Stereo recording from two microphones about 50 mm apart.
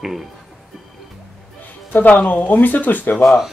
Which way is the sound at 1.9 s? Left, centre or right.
Left.